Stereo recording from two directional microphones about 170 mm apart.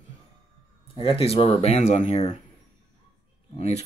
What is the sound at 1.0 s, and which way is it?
Speech, 35° left (ahead or behind).